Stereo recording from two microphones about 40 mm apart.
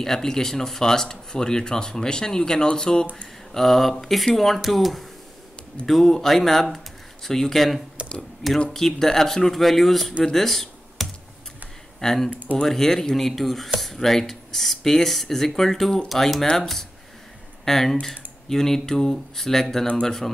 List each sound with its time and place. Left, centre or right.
0.0 s speech: centre
3.5 s speech: centre
10.2 s computer keyboard: centre
12.0 s speech: centre
12.3 s speech: right
12.6 s speech: centre